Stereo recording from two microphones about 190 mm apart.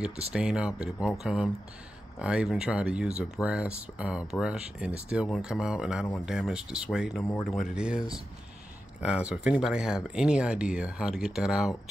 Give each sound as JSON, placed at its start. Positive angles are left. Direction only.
{"t": 0.3, "sound": "speech", "side_deg": -5}
{"t": 7.4, "sound": "speech", "side_deg": 45}
{"t": 7.7, "sound": "speech", "side_deg": -5}
{"t": 9.0, "sound": "speech", "side_deg": -5}